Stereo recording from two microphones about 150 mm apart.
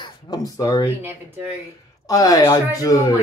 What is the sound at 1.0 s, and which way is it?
Speech, 15° right (ahead or behind).